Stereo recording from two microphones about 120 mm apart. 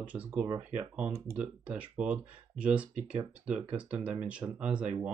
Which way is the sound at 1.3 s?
10° right (ahead or behind).